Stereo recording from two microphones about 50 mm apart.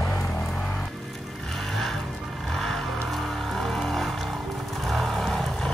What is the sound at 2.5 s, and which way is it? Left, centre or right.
Vehicle, centre.